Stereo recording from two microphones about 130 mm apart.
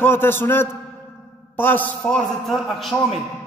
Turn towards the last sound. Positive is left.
turn(degrees=0)  # may be behind; listen again after turning